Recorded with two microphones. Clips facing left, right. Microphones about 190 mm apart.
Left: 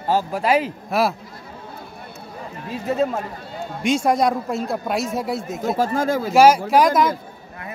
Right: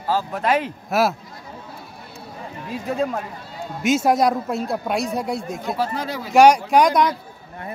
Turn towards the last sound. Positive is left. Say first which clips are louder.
# even
turn(degrees=0)  # may be behind; listen again after turning